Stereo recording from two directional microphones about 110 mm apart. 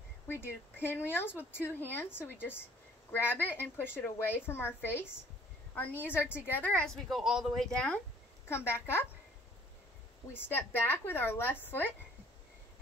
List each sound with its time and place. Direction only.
0.3 s a woman's voice: 20° left (ahead or behind)
6.2 s a woman's voice: 20° left (ahead or behind)
7.1 s speech: centre (ahead or behind)
8.5 s a woman's voice: 25° left (ahead or behind)
10.3 s a woman's voice: 20° left (ahead or behind)